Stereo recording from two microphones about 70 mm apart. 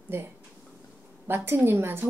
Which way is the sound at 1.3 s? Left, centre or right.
Right.